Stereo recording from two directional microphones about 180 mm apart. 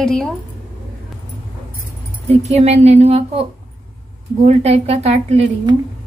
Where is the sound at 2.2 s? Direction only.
35° right (ahead or behind).